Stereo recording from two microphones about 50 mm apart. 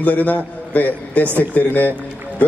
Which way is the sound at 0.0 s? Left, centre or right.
Left.